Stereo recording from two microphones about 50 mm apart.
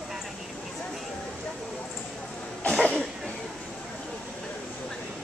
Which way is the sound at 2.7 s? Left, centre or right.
Centre.